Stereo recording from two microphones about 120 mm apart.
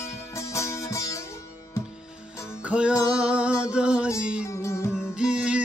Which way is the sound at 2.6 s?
10° right (ahead or behind).